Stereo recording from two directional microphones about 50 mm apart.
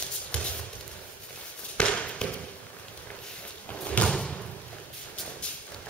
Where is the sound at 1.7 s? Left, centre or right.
Left.